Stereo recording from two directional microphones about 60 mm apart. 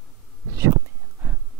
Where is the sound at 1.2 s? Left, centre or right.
Right.